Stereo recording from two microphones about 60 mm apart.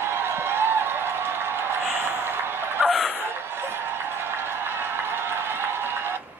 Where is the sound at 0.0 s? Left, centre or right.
Right.